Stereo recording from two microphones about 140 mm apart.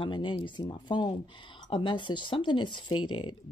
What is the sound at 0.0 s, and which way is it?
Speech, 35° left (ahead or behind).